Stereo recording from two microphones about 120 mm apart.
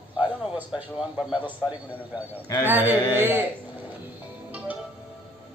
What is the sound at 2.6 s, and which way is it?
Speech, 15° right (ahead or behind).